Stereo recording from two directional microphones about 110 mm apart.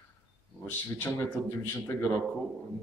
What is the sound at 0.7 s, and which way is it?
Speech, 15° left (ahead or behind).